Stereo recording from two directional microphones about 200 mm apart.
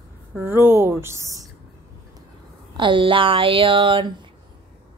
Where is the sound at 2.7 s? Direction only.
25° right (ahead or behind).